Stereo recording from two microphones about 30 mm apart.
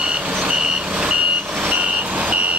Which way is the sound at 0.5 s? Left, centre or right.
Right.